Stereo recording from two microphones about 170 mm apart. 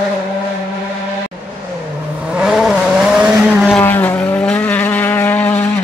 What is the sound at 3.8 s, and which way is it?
Vehicle, 10° left (ahead or behind).